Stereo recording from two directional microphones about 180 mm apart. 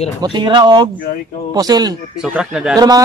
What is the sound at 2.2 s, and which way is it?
Speech, 5° right (ahead or behind).